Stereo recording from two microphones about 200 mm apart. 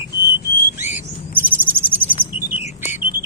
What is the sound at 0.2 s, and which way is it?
Bird, 10° right (ahead or behind).